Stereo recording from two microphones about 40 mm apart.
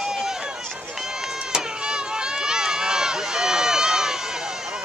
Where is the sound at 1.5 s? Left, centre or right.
Right.